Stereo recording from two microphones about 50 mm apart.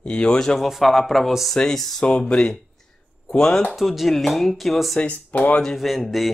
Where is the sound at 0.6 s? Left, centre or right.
Centre.